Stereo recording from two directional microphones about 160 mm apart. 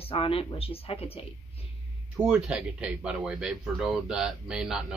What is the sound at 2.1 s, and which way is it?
Speech, 5° right (ahead or behind).